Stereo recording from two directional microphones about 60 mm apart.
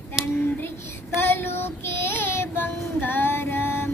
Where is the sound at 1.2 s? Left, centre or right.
Left.